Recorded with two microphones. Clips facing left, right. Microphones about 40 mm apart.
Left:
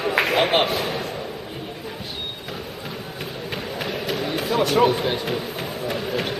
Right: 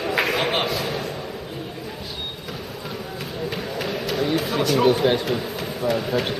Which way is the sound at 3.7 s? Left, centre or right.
Centre.